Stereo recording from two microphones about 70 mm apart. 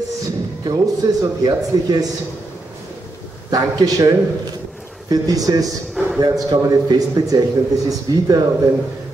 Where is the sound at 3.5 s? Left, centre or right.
Right.